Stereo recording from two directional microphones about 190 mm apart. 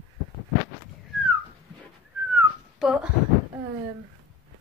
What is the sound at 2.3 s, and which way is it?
Whistling, 5° right (ahead or behind).